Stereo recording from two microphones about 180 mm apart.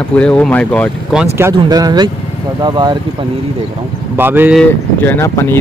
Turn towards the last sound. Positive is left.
turn(degrees=15)  # may be behind; listen again after turning